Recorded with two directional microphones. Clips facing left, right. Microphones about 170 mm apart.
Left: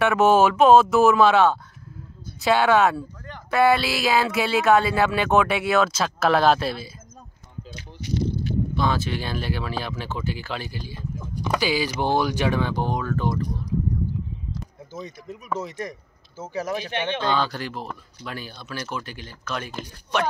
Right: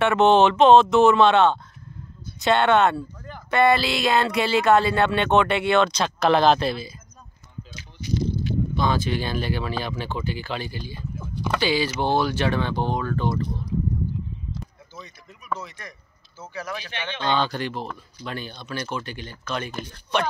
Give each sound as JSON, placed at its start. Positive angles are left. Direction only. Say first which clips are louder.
{"t": 0.0, "sound": "speech", "louder": "right 1 dB", "side_deg": 0}
{"t": 8.7, "sound": "speech", "louder": "right 2 dB", "side_deg": 0}
{"t": 16.3, "sound": "speech", "louder": "left 5 dB", "side_deg": 45}
{"t": 17.2, "sound": "speech", "louder": "right 5 dB", "side_deg": 5}